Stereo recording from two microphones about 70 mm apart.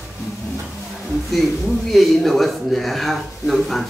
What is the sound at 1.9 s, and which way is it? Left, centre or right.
A man's voice, centre.